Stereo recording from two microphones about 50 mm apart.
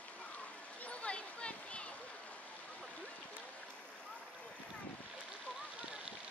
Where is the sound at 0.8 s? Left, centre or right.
Left.